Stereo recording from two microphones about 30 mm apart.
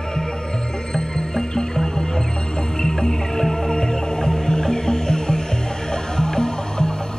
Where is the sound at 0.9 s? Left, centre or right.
Left.